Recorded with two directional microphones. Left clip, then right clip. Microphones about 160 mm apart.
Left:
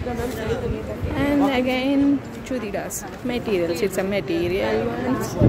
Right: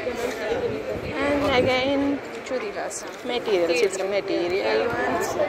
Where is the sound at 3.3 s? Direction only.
25° left (ahead or behind).